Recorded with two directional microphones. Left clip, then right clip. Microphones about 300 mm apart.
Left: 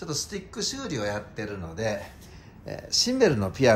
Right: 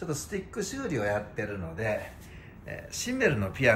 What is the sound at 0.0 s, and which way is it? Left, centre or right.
Speech, centre.